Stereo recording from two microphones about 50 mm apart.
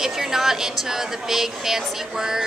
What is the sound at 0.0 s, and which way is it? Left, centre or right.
A woman's voice, centre.